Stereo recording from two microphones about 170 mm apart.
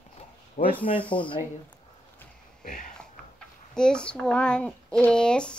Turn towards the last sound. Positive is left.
turn(degrees=5)  # may be behind; listen again after turning